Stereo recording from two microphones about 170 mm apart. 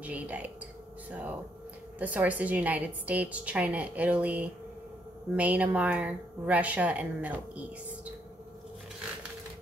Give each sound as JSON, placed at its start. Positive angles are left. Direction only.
{"t": 0.0, "sound": "speech", "side_deg": -10}
{"t": 2.0, "sound": "speech", "side_deg": -10}